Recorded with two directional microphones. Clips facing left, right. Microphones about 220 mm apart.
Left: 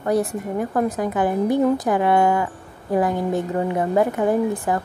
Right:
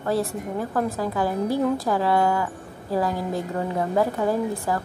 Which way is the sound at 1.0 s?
20° left (ahead or behind).